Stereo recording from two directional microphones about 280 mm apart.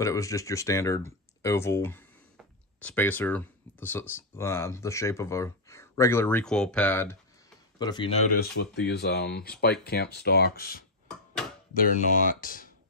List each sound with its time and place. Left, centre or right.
0.0 s speech: centre
8.4 s speech: left